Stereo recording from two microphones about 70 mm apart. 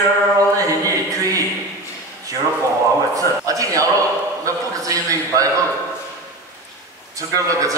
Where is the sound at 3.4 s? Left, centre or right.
Right.